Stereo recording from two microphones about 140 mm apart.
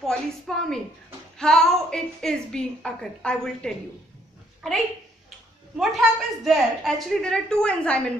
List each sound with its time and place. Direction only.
0.0 s a woman's voice: 5° left (ahead or behind)
5.8 s a woman's voice: centre (ahead or behind)